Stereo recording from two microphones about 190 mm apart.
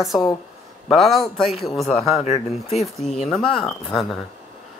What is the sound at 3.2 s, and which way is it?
Speech, centre (ahead or behind).